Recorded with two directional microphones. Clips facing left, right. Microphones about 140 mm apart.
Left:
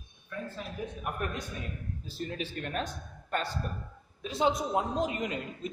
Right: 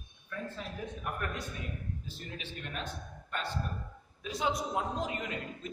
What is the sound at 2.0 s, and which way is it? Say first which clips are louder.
A man's voice: left 7 dB; 40° left (ahead or behind).